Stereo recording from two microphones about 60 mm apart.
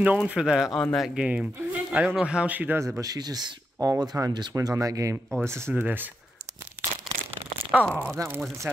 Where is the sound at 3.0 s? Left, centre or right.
Right.